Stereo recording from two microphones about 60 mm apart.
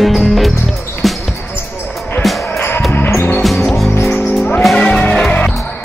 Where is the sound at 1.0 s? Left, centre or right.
Centre.